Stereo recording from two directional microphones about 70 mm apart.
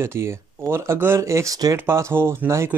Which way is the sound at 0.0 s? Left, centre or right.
Right.